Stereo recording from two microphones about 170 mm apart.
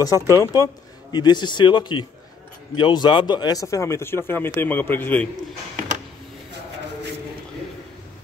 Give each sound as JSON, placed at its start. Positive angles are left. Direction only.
{"t": 0.0, "sound": "speech", "side_deg": 20}